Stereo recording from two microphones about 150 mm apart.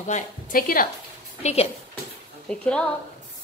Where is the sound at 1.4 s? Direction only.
45° left (ahead or behind).